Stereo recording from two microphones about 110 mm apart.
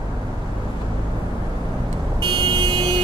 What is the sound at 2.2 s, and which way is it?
Vehicle, 40° right (ahead or behind).